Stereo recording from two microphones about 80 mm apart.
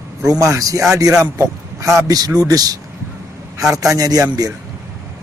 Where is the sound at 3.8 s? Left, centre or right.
Right.